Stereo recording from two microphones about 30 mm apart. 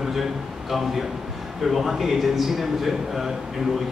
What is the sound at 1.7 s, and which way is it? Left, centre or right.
A man's voice, centre.